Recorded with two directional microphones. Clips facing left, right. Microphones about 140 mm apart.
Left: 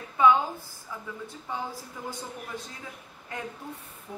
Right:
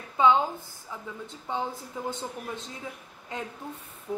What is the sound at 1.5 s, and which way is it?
Speech, 25° right (ahead or behind).